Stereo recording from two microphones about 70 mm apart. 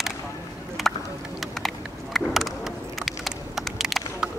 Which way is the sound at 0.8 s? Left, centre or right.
Centre.